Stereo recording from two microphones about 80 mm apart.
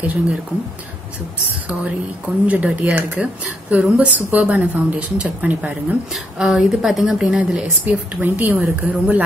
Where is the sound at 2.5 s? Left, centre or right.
Centre.